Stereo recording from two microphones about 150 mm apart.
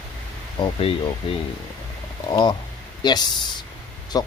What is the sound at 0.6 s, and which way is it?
Speech, 40° left (ahead or behind).